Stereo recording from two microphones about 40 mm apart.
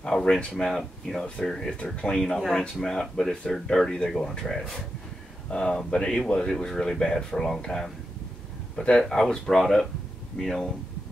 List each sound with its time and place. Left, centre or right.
0.0 s a sound: centre
0.7 s speech: centre
1.2 s speech: left
1.5 s speech: centre
2.0 s speech: left
9.2 s speech: centre